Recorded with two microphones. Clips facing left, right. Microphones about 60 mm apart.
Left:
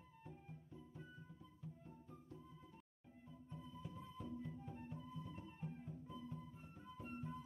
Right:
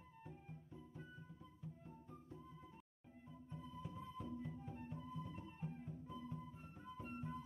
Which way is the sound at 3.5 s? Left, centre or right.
Centre.